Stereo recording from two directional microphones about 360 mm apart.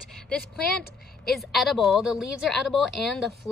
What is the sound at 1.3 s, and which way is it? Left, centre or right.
A woman's voice, centre.